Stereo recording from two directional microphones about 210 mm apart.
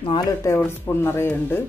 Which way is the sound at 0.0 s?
20° left (ahead or behind).